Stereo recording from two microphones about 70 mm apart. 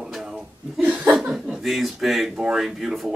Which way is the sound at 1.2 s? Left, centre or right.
Centre.